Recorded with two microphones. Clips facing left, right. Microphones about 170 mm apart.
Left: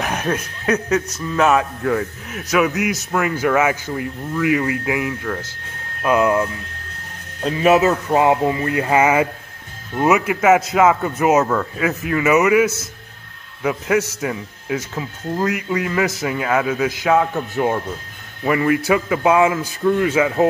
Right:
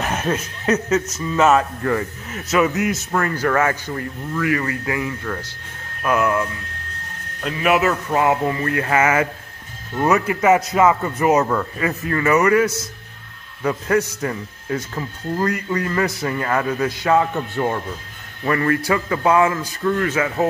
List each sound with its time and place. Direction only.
0.0 s chuckle: 5° right (ahead or behind)
1.2 s speech: centre (ahead or behind)
6.0 s speech: 20° left (ahead or behind)
7.4 s speech: 25° left (ahead or behind)
9.9 s speech: 5° left (ahead or behind)